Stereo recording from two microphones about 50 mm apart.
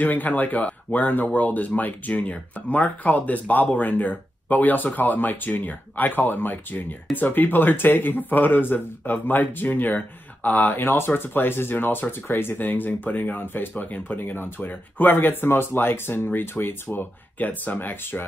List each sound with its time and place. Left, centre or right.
0.0 s speech: left